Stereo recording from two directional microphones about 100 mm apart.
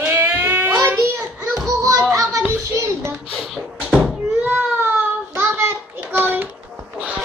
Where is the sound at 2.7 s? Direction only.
30° right (ahead or behind).